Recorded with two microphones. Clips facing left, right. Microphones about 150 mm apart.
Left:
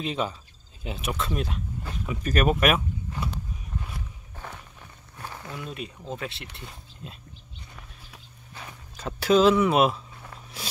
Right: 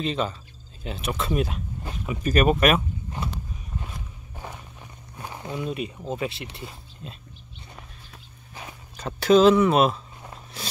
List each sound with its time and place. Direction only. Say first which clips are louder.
0.0 s speech: right 2 dB; 10° left (ahead or behind)
1.1 s speech: right 6 dB; 5° right (ahead or behind)
4.4 s walk: right 2 dB; 15° right (ahead or behind)
5.7 s speech: right 4 dB; 5° right (ahead or behind)
8.9 s speech: right 3 dB; 5° left (ahead or behind)
10.6 s a sound: right 2 dB; 10° left (ahead or behind)